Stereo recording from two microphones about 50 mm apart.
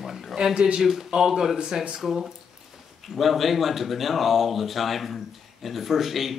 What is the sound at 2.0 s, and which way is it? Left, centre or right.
Speech, centre.